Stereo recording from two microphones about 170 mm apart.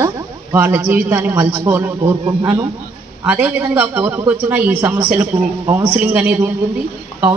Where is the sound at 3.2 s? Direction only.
10° right (ahead or behind).